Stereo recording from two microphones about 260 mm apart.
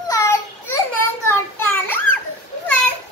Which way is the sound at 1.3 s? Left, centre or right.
Centre.